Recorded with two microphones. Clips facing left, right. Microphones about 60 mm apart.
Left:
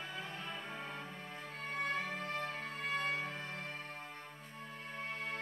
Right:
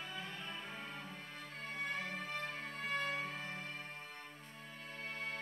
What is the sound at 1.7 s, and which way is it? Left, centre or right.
Music, centre.